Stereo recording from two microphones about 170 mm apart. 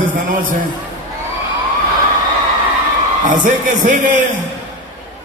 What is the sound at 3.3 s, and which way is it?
Speech, 50° right (ahead or behind).